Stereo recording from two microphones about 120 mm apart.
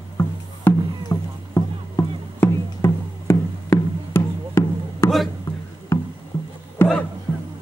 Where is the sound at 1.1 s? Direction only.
30° left (ahead or behind).